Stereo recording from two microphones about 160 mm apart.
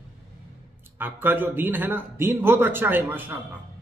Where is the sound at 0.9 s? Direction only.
10° right (ahead or behind).